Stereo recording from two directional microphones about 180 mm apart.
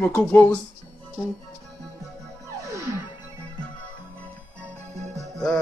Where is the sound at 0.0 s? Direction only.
10° left (ahead or behind).